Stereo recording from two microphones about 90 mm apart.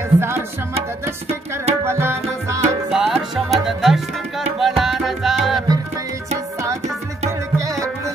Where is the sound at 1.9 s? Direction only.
30° right (ahead or behind).